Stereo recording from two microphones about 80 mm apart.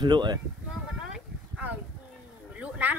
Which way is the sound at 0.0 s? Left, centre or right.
Right.